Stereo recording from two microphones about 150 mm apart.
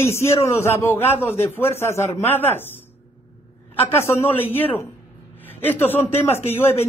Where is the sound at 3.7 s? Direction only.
15° left (ahead or behind).